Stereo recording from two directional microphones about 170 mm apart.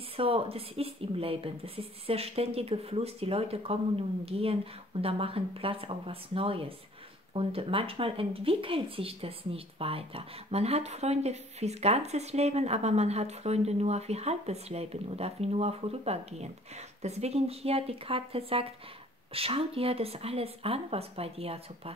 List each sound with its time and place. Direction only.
0.2 s speech: 35° right (ahead or behind)